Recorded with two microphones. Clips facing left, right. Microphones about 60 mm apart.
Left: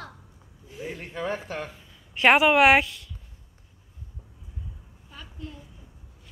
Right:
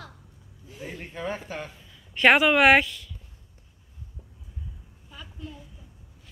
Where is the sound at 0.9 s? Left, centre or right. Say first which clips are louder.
Left 2 dB; left.